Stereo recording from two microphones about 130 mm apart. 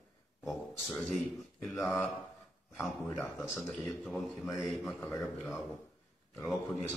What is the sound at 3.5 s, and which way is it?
Speech, centre (ahead or behind).